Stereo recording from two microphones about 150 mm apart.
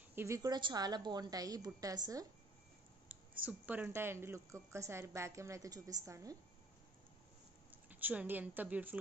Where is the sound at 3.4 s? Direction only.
10° right (ahead or behind).